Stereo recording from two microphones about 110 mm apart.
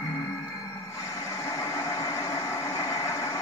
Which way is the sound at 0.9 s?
25° left (ahead or behind).